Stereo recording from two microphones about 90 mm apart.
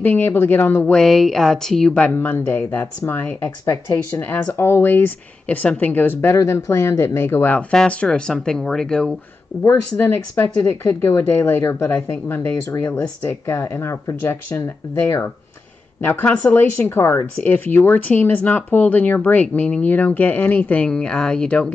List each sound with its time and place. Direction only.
0.0 s speech: 20° left (ahead or behind)
0.9 s speech: centre (ahead or behind)
2.1 s speech: 25° left (ahead or behind)
6.3 s speech: 30° left (ahead or behind)
7.5 s speech: 10° left (ahead or behind)
9.5 s speech: 25° left (ahead or behind)
13.6 s speech: 35° left (ahead or behind); by 21.7 s 10° left (ahead or behind)